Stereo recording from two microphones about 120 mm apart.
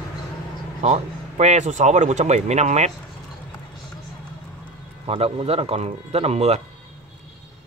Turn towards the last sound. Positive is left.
turn(degrees=-60)  # may be behind; listen again after turning